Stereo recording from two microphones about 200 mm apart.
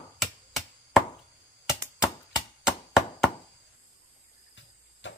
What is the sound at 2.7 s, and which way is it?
Chop, 5° right (ahead or behind).